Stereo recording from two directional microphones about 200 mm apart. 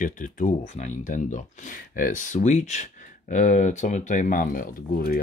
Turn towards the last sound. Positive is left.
turn(degrees=50)  # may be behind; listen again after turning